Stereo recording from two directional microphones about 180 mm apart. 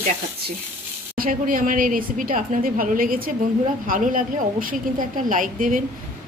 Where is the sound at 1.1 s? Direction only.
50° right (ahead or behind).